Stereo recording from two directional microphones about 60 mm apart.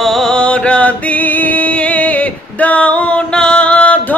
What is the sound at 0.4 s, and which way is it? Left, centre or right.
Music, centre.